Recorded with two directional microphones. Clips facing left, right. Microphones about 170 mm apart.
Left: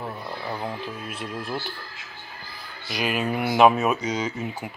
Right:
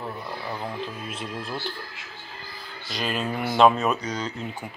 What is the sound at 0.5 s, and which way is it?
Speech, 5° left (ahead or behind).